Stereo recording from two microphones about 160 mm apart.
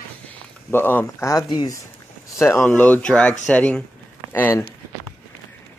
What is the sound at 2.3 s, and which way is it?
Speech, 15° left (ahead or behind).